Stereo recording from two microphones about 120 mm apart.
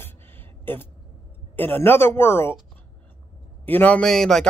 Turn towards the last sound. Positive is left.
turn(degrees=5)  # may be behind; listen again after turning